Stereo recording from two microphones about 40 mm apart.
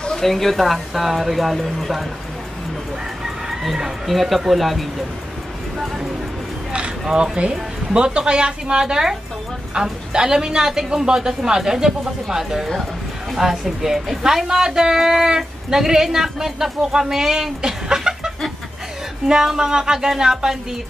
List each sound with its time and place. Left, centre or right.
0.2 s speech: centre
3.6 s speech: centre
7.1 s a woman's voice: right